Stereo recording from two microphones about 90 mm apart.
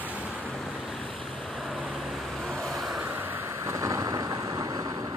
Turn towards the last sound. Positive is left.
turn(degrees=-45)  # may be behind; listen again after turning